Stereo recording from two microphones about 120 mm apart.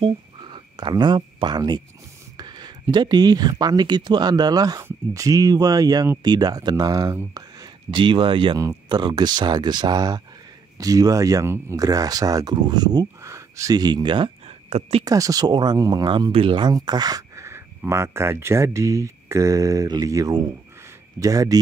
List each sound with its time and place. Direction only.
0.0 s speech: 45° right (ahead or behind)
7.9 s speech: 45° right (ahead or behind)
14.7 s speech: 55° right (ahead or behind)
15.0 s speech: 30° right (ahead or behind)
16.3 s speech: 50° right (ahead or behind); by 21.5 s 30° right (ahead or behind)